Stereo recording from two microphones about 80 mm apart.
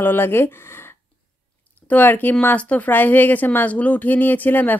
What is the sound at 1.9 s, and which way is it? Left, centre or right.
Speech, left.